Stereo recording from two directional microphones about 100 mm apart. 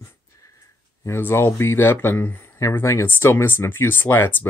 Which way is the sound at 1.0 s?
25° left (ahead or behind).